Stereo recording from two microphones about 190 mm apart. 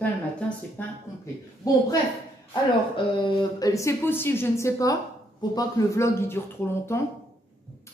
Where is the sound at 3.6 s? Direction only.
15° left (ahead or behind).